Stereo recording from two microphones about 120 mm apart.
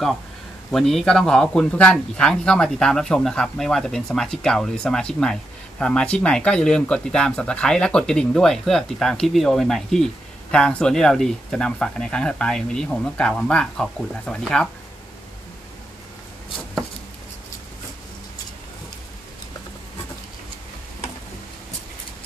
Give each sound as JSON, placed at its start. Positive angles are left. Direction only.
{"t": 0.7, "sound": "speech", "side_deg": 5}